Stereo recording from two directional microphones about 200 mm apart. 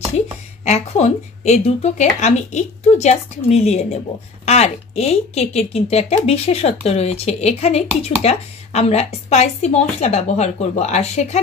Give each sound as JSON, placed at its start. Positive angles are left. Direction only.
{"t": 0.7, "sound": "speech", "side_deg": 35}